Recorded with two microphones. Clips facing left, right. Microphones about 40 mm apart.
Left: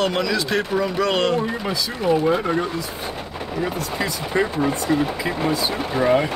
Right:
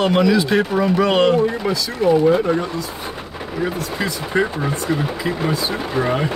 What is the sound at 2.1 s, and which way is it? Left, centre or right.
Speech, centre.